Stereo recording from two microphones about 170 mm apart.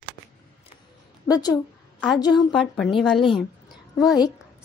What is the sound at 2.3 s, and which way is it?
A woman's voice, centre (ahead or behind).